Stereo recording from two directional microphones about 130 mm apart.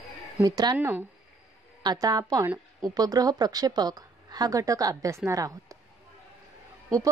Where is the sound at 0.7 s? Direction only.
15° right (ahead or behind).